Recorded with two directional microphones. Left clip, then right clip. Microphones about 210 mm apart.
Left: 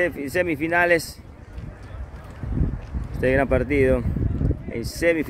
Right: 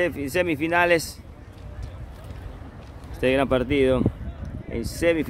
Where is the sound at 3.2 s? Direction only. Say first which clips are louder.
Left 1 dB; 5° right (ahead or behind).